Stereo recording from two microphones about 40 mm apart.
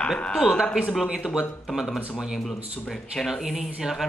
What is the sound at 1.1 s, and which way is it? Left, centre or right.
Speech, centre.